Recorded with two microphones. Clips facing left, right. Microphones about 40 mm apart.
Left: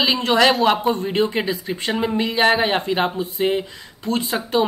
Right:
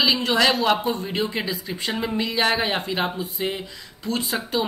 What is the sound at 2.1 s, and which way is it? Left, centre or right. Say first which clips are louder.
Speech: left 5 dB; left.